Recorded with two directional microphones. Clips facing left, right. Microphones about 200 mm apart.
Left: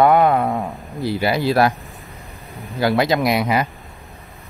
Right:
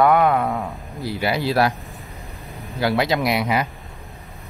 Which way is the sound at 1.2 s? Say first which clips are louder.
Left 2 dB; 45° left (ahead or behind).